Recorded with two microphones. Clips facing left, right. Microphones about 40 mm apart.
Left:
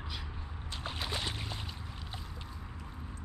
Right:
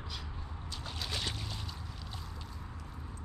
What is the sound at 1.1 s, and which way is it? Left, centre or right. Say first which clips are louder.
Boat: right 1 dB; centre.